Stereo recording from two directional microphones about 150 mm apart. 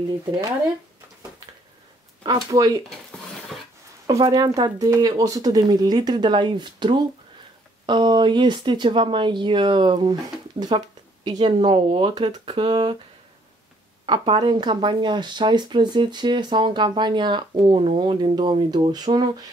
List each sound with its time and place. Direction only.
2.2 s speech: 25° right (ahead or behind)
2.9 s stir: centre (ahead or behind)
4.1 s speech: 25° right (ahead or behind)
14.0 s speech: 35° right (ahead or behind)